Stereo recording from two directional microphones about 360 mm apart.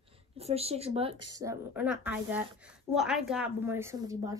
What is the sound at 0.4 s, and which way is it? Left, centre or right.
Speech, centre.